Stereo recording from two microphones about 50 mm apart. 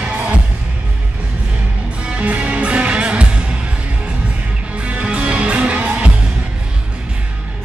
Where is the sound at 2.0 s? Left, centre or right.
Right.